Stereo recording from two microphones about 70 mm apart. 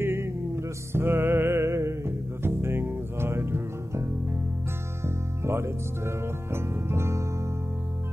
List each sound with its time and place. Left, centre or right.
0.0 s music: right